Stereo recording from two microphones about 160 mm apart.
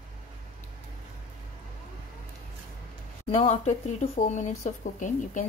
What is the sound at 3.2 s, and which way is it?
Speech, 40° left (ahead or behind).